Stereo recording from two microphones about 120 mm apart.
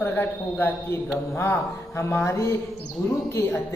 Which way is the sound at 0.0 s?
15° left (ahead or behind).